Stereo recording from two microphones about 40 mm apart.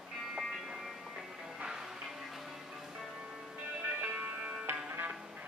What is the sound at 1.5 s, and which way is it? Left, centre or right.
Music, centre.